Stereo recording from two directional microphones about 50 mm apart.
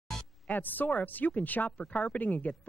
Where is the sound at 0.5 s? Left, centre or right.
Left.